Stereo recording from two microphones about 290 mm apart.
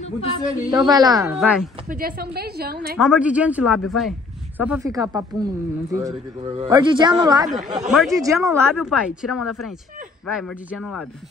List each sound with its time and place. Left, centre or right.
0.0 s speech: centre
0.5 s speech: centre
1.1 s speech: centre
1.9 s a woman's voice: right
3.0 s speech: centre